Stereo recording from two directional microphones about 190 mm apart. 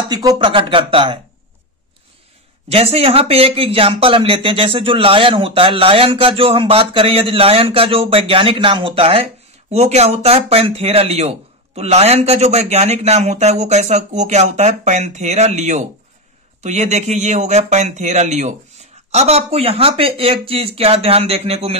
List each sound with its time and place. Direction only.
0.1 s speech: 20° right (ahead or behind)
2.7 s speech: 30° right (ahead or behind)